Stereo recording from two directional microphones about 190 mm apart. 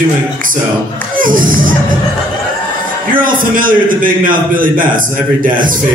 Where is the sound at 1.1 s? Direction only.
45° right (ahead or behind).